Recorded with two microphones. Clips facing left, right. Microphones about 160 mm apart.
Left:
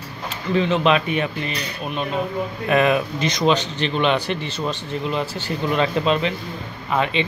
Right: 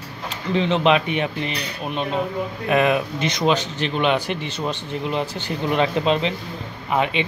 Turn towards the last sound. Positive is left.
turn(degrees=-15)  # may be behind; listen again after turning